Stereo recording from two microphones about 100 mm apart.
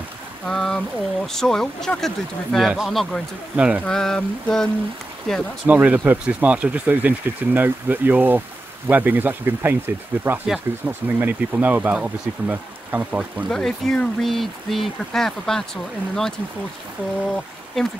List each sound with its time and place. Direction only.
0.5 s speech: 5° left (ahead or behind)
3.5 s speech: 10° right (ahead or behind)
3.8 s speech: 5° left (ahead or behind)
5.7 s speech: 15° right (ahead or behind)
13.5 s speech: 5° left (ahead or behind)
17.8 s speech: 5° left (ahead or behind)